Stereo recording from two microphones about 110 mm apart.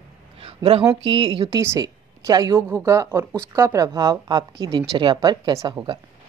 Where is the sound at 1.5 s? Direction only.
30° right (ahead or behind).